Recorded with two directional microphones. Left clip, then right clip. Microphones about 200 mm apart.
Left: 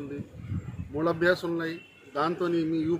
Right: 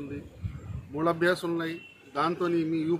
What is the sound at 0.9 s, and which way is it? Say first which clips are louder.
Speech: even; 5° left (ahead or behind).